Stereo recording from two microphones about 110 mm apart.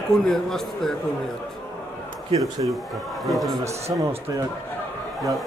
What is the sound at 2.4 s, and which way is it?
Speech, centre (ahead or behind).